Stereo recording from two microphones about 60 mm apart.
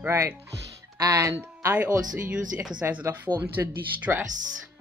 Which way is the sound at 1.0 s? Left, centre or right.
Right.